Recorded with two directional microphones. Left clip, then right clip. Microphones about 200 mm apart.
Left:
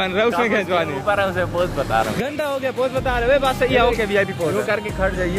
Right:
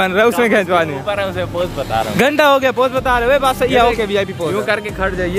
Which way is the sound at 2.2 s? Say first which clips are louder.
Right 11 dB; 50° right (ahead or behind).